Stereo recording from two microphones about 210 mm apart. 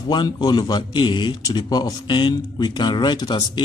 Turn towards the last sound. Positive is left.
turn(degrees=20)  # may be behind; listen again after turning